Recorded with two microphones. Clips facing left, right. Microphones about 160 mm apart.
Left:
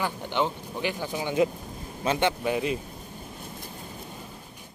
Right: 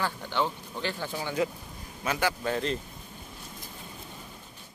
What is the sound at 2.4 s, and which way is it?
Speech, 10° left (ahead or behind).